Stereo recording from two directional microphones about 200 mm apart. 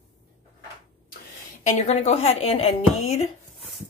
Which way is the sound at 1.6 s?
35° left (ahead or behind).